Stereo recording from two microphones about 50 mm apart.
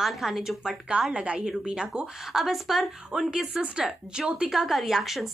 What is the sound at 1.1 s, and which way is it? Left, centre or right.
Speech, right.